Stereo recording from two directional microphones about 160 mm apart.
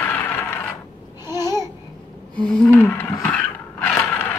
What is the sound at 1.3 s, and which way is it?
Babbling, 25° left (ahead or behind).